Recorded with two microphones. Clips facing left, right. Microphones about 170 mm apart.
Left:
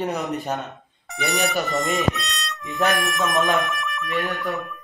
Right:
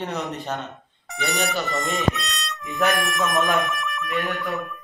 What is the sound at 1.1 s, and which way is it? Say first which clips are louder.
Speech: left 2 dB; centre (ahead or behind).